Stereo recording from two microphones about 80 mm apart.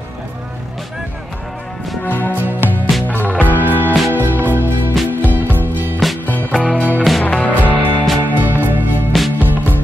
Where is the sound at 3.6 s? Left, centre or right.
Right.